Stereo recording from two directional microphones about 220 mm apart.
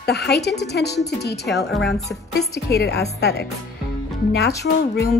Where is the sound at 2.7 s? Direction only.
50° left (ahead or behind).